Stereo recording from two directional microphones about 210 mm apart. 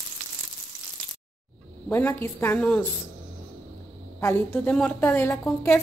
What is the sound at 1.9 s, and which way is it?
Speech, 10° left (ahead or behind).